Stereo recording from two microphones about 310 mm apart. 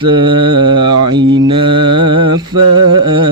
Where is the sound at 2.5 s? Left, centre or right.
Right.